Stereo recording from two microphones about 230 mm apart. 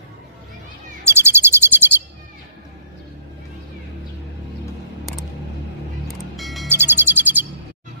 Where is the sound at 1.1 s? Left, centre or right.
Centre.